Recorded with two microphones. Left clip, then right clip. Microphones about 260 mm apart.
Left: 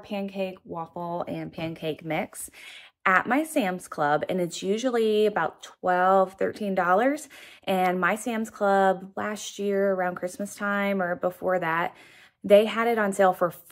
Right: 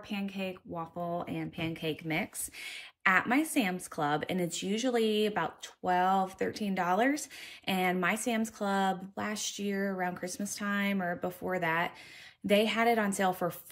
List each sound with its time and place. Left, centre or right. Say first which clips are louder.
0.9 s speech: left 3 dB; left
1.2 s speech: left 4 dB; centre